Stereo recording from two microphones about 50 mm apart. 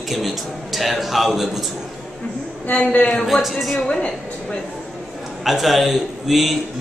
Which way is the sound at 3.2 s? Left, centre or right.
Centre.